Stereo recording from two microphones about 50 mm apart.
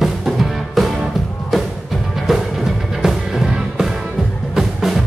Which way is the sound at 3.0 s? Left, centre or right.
Centre.